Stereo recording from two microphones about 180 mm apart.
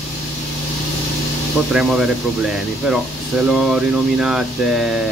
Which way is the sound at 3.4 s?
Centre (ahead or behind).